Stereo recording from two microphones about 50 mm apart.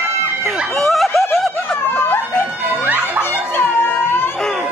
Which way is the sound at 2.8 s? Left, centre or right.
Right.